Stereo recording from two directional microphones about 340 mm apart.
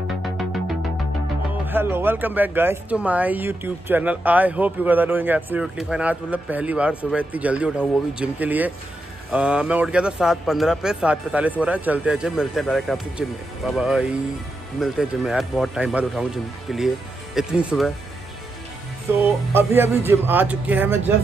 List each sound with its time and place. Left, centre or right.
1.7 s speech: centre
19.1 s music: centre
20.1 s speech: centre